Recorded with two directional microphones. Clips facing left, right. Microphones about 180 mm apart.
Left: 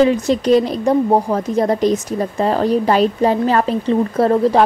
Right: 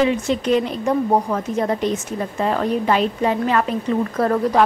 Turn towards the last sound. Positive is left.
turn(degrees=25)  # may be behind; listen again after turning